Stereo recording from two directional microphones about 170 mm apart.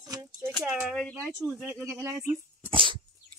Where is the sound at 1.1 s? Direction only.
15° right (ahead or behind).